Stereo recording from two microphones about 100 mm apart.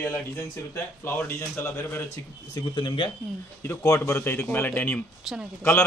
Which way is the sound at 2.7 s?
55° left (ahead or behind).